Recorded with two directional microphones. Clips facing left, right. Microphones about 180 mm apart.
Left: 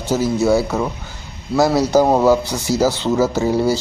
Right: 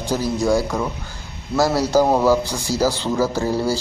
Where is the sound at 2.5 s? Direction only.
10° right (ahead or behind).